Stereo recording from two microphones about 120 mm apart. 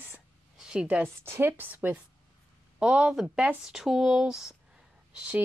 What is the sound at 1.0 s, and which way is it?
A woman's voice, 20° right (ahead or behind).